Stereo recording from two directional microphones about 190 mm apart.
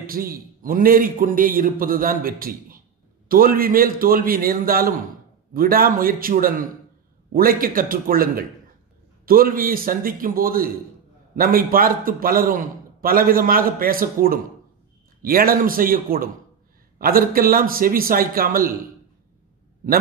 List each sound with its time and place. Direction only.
0.0 s a man's voice: 50° right (ahead or behind)